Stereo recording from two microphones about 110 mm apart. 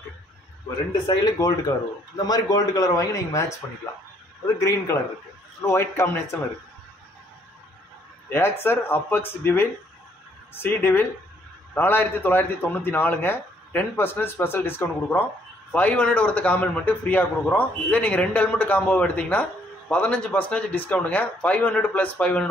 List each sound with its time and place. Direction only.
1.0 s speech: 35° left (ahead or behind)
4.6 s a man's voice: 30° left (ahead or behind)
8.3 s a man's voice: 20° left (ahead or behind)